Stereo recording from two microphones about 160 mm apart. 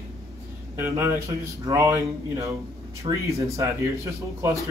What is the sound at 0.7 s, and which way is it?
A man's voice, 15° right (ahead or behind).